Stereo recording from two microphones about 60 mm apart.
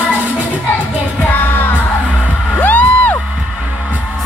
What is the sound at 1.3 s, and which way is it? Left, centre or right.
Music, left.